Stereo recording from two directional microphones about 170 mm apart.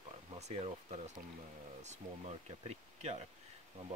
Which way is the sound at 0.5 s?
40° right (ahead or behind).